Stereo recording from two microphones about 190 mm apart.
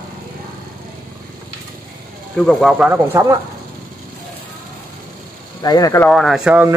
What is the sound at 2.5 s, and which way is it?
Speech, centre (ahead or behind).